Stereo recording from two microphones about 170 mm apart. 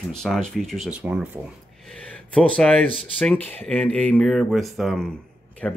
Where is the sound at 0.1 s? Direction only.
5° left (ahead or behind).